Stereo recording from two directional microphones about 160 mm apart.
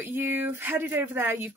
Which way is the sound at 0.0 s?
15° right (ahead or behind).